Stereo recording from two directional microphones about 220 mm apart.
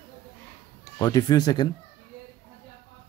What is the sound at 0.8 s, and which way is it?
Speech, 15° left (ahead or behind).